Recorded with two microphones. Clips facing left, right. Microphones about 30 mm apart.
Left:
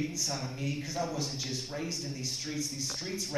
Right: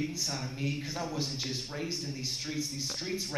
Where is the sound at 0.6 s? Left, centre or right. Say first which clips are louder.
Even; centre.